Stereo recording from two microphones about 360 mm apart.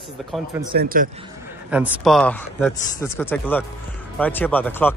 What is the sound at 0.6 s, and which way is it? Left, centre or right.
Speech, right.